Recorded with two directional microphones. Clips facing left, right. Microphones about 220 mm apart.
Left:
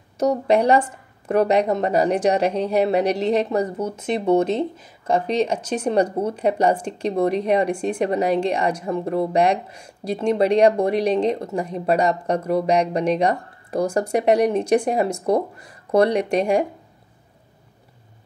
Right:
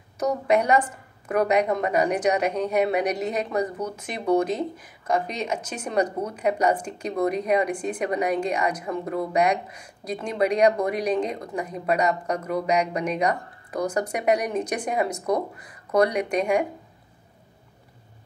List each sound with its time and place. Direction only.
0.2 s speech: 30° left (ahead or behind)